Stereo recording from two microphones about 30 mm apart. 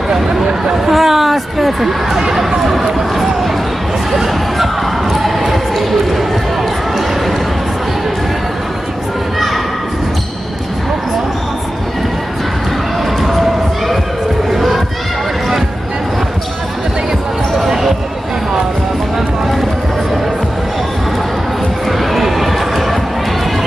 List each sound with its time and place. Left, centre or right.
0.1 s speech: right
0.9 s speech: centre
2.2 s speech: centre
4.1 s music: centre
5.1 s speech: centre
13.2 s crowd: centre
14.5 s children playing: centre
22.1 s a sound: centre